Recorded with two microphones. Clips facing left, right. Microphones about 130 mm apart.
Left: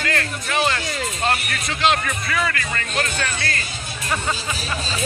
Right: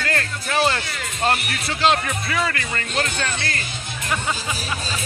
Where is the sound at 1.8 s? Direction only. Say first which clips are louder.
Right 1 dB; 30° right (ahead or behind).